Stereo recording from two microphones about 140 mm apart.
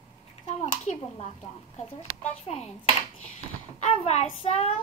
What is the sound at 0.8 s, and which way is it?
Speech, 55° left (ahead or behind).